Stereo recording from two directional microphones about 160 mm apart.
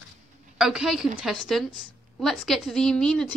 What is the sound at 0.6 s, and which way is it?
A woman's voice, 5° right (ahead or behind).